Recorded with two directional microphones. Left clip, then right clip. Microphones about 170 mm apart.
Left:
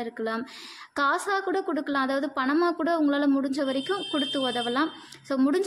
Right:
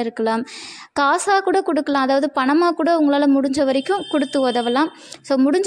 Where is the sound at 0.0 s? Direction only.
45° right (ahead or behind).